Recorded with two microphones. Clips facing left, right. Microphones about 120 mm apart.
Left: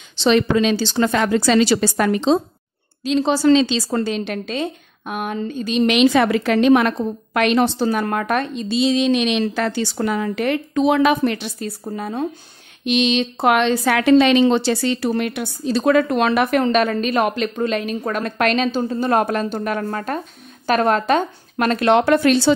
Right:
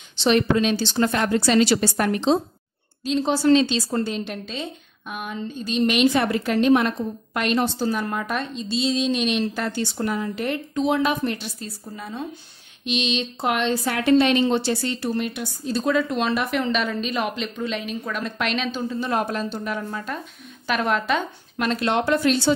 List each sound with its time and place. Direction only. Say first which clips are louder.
0.2 s a woman's voice: left 3 dB; 90° left
3.0 s a woman's voice: left 4 dB; 90° left; by 5.4 s 55° left (ahead or behind)
5.5 s a woman's voice: left 3 dB; 90° left
11.8 s a woman's voice: left 8 dB; 50° left (ahead or behind); by 16.5 s 65° left (ahead or behind)
16.5 s a woman's voice: left 7 dB; 50° left (ahead or behind)
20.6 s a woman's voice: left 6 dB; 40° left (ahead or behind); by 22.5 s 70° left (ahead or behind)